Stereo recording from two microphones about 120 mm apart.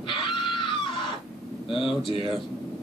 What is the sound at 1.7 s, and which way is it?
Speech, 45° left (ahead or behind).